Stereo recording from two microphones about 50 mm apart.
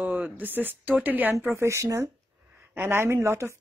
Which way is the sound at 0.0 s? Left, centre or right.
Right.